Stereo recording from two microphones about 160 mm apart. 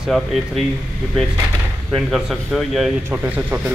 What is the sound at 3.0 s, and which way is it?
Speech, 10° right (ahead or behind).